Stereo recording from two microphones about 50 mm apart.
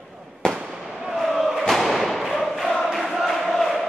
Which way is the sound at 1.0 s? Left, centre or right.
Centre.